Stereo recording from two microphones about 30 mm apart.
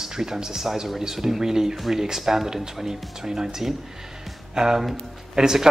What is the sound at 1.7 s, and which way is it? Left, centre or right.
Speech, centre.